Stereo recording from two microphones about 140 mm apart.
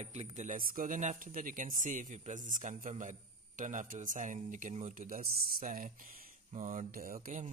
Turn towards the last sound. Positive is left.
turn(degrees=-75)  # may be behind; listen again after turning